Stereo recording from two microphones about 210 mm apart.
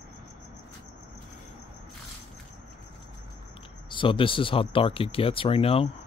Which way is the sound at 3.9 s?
25° left (ahead or behind).